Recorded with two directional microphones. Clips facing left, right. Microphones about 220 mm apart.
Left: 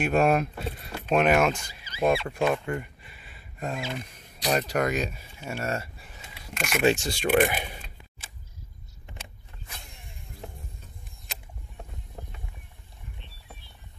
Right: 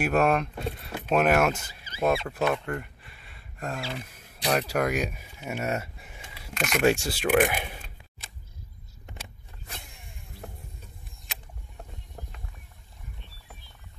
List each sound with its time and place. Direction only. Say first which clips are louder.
0.0 s speech: left 1 dB; centre (ahead or behind)
2.5 s a sound: left 1 dB; 5° left (ahead or behind)
3.9 s speech: left 2 dB; 5° right (ahead or behind)
6.4 s speech: right 1 dB; centre (ahead or behind)
6.9 s speech: left 1 dB; 5° right (ahead or behind)